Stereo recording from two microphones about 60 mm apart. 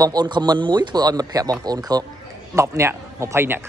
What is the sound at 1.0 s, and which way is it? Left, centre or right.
Speech, right.